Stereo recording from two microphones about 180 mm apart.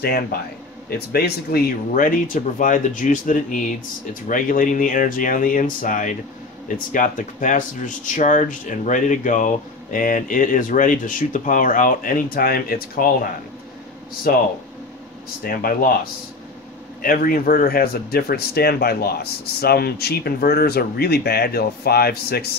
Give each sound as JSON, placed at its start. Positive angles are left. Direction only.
{"t": 0.0, "sound": "speech", "side_deg": 60}
{"t": 15.4, "sound": "speech", "side_deg": 55}
{"t": 17.0, "sound": "speech", "side_deg": 55}